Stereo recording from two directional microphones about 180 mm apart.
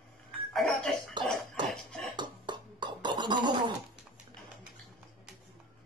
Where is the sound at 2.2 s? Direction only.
25° right (ahead or behind).